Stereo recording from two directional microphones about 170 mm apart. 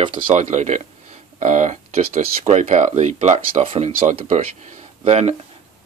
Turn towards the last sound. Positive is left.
turn(degrees=-40)  # may be behind; listen again after turning